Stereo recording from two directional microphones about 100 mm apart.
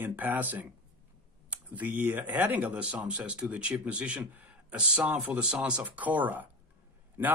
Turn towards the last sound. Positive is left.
turn(degrees=-20)  # may be behind; listen again after turning